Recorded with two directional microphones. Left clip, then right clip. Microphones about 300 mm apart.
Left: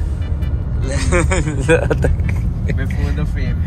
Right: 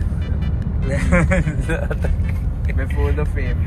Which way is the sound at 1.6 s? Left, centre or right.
Left.